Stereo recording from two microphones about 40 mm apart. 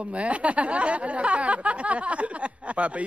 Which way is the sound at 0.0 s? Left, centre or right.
Right.